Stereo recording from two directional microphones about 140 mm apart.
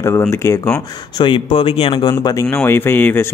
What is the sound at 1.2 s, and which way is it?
Speech, 40° left (ahead or behind).